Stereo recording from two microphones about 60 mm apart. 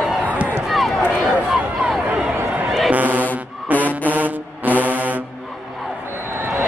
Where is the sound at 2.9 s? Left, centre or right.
Right.